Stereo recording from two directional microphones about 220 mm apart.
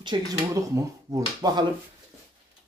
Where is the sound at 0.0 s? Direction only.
20° right (ahead or behind).